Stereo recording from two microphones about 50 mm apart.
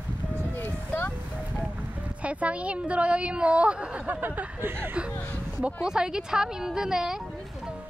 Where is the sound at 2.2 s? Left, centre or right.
Right.